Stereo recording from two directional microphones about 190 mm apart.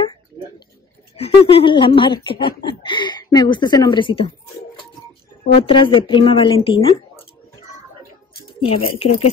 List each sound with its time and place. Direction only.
1.1 s speech: 30° left (ahead or behind)
5.7 s speech: 25° left (ahead or behind)
8.6 s speech: 30° left (ahead or behind)